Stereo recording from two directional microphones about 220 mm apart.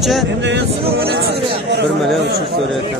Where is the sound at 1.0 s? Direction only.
45° right (ahead or behind).